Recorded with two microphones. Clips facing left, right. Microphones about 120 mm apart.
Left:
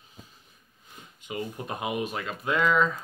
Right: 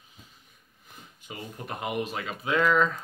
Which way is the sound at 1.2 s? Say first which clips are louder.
Left 5 dB; 20° left (ahead or behind).